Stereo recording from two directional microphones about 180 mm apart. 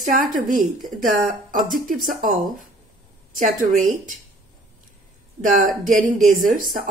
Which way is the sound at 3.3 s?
45° right (ahead or behind).